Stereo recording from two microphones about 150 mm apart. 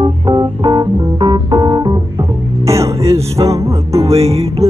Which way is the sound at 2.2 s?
20° right (ahead or behind).